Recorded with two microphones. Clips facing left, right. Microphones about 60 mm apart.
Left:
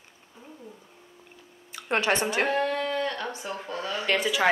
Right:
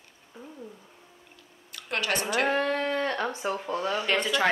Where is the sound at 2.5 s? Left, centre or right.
Right.